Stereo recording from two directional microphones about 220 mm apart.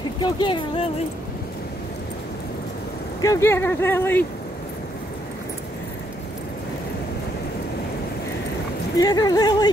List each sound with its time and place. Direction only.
0.2 s speech: 20° left (ahead or behind)
3.2 s speech: 15° left (ahead or behind)
8.9 s speech: 15° left (ahead or behind)